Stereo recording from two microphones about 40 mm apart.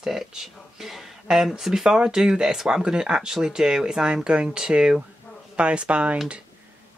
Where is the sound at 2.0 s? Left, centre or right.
Right.